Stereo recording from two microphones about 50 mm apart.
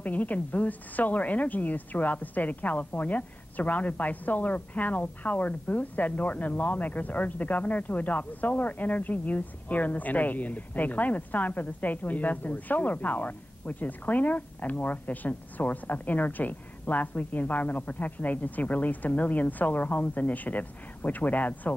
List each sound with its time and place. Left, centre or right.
0.0 s a woman's voice: left